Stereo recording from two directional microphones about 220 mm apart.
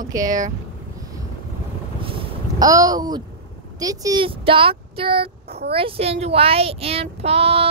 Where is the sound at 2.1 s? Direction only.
20° right (ahead or behind).